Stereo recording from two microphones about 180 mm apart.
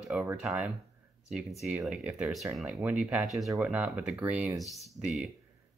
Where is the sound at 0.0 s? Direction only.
5° right (ahead or behind).